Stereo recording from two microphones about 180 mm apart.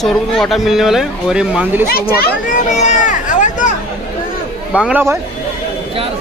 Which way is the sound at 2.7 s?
40° left (ahead or behind).